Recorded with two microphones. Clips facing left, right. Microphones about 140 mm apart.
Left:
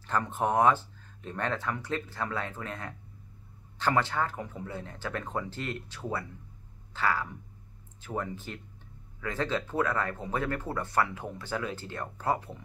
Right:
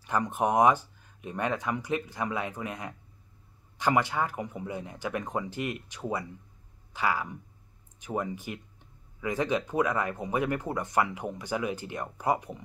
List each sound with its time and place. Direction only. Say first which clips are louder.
0.0 s speech: right 2 dB; 15° right (ahead or behind)
6.9 s a sound: even; 15° right (ahead or behind)
8.0 s speech: right 3 dB; 15° right (ahead or behind)